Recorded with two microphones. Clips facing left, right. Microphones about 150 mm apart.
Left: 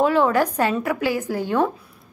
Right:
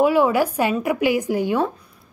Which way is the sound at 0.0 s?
10° right (ahead or behind).